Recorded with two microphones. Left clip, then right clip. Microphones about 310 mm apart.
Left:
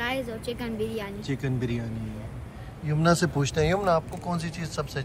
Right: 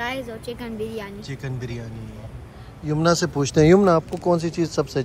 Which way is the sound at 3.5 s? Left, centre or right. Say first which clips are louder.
Right 9 dB; right.